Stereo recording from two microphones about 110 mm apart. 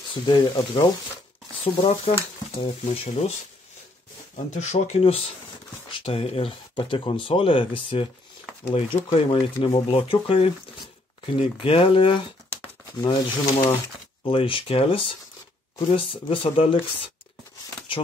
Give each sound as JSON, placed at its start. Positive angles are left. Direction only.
{"t": 0.3, "sound": "speech", "side_deg": 45}
{"t": 1.6, "sound": "speech", "side_deg": 60}
{"t": 4.6, "sound": "speech", "side_deg": 90}
{"t": 6.7, "sound": "speech", "side_deg": 50}
{"t": 8.6, "sound": "speech", "side_deg": 60}